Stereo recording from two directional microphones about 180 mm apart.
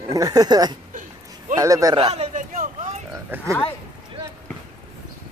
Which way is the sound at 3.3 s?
15° right (ahead or behind).